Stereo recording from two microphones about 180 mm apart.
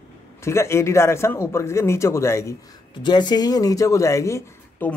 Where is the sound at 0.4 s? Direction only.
15° left (ahead or behind).